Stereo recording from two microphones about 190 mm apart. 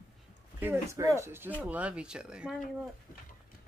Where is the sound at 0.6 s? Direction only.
15° right (ahead or behind).